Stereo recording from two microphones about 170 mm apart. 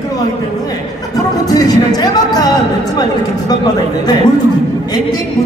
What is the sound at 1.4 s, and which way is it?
Speech, 20° left (ahead or behind).